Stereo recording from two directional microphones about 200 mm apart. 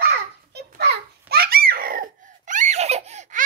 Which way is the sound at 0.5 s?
55° right (ahead or behind).